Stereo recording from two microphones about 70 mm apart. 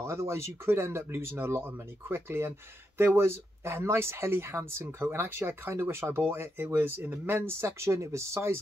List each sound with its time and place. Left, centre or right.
0.0 s speech: right